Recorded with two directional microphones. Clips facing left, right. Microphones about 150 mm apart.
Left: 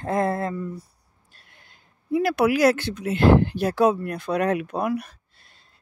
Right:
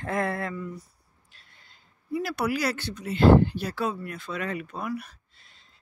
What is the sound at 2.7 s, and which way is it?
Speech, 90° left.